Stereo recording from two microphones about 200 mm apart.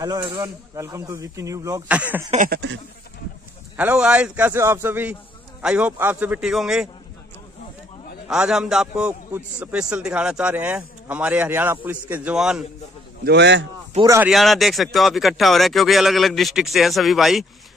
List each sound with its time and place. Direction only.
0.0 s a man's voice: 20° right (ahead or behind)
2.3 s a sound: 50° right (ahead or behind)
3.7 s a man's voice: 5° right (ahead or behind)
8.3 s a man's voice: 5° right (ahead or behind)
13.2 s a man's voice: 60° right (ahead or behind)
14.0 s a man's voice: 15° right (ahead or behind)
14.3 s speech: centre (ahead or behind)